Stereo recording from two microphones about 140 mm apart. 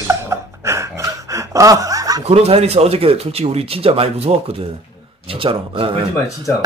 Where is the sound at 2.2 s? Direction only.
45° right (ahead or behind).